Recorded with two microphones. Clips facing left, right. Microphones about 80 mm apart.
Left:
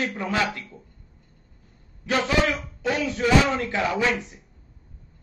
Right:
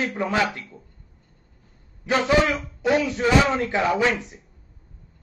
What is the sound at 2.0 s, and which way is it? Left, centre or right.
A man's voice, centre.